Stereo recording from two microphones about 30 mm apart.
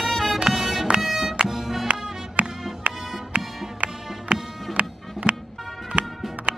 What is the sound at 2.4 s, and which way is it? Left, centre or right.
Music, right.